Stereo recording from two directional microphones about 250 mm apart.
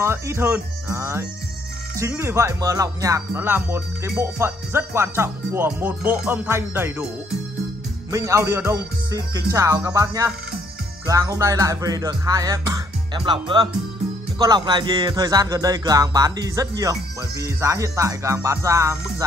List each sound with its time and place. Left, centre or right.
0.0 s speech: centre
8.1 s speech: centre